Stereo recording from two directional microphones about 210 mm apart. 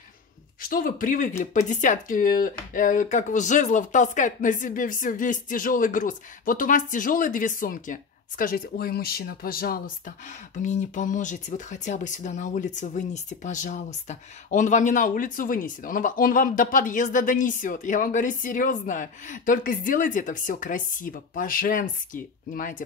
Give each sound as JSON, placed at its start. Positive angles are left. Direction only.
{"t": 0.6, "sound": "a man's voice", "side_deg": 40}